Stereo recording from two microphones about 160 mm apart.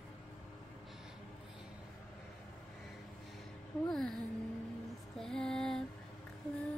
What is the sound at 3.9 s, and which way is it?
Music, centre (ahead or behind).